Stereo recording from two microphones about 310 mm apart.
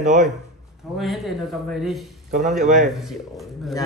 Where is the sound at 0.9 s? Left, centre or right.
Centre.